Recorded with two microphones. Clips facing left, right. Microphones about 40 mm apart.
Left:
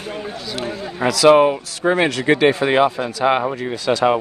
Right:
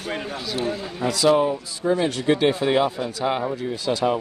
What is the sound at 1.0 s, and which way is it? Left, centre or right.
Speech, left.